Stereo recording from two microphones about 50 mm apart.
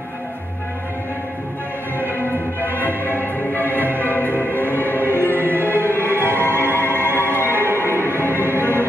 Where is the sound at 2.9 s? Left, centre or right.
Left.